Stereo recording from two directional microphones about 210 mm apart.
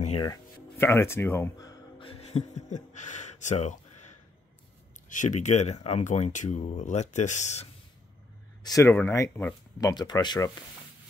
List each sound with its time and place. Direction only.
0.2 s music: 15° left (ahead or behind); by 4.1 s 35° left (ahead or behind)
5.1 s speech: 35° left (ahead or behind)
8.6 s speech: 15° left (ahead or behind)